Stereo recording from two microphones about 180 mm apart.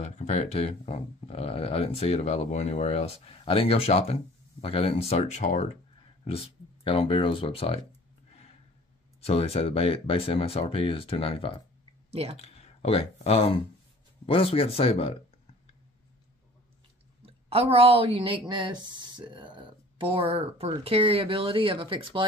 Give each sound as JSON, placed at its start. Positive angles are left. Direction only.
{"t": 0.0, "sound": "speech", "side_deg": 35}
{"t": 9.2, "sound": "speech", "side_deg": 35}
{"t": 12.1, "sound": "speech", "side_deg": -35}
{"t": 12.4, "sound": "speech", "side_deg": 35}
{"t": 17.2, "sound": "speech", "side_deg": -30}